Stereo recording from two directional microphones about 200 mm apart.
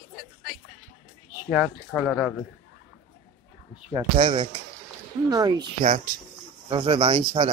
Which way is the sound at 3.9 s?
25° right (ahead or behind).